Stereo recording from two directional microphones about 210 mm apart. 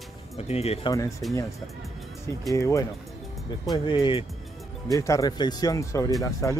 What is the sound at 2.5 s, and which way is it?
Speech, 15° left (ahead or behind).